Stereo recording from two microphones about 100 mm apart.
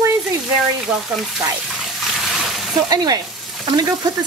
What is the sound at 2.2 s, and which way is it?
Splash, centre (ahead or behind).